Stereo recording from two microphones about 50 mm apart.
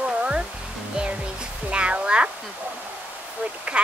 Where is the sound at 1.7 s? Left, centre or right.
Right.